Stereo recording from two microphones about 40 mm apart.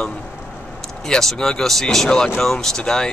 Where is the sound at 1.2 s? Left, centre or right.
Centre.